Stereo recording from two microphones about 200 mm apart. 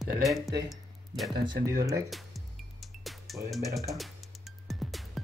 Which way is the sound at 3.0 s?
Centre (ahead or behind).